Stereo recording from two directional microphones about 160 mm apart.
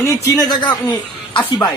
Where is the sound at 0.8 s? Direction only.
10° left (ahead or behind).